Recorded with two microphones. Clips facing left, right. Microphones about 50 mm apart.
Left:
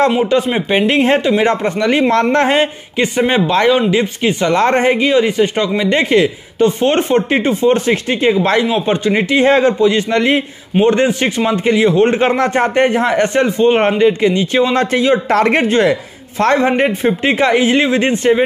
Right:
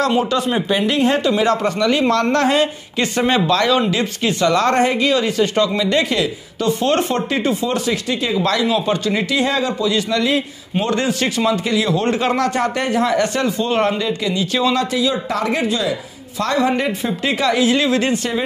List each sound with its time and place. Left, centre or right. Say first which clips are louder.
0.1 s a man's voice: left 4 dB; centre
3.0 s a man's voice: left 3 dB; left